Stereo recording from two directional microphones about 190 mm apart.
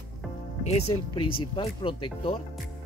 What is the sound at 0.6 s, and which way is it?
Speech, 35° left (ahead or behind).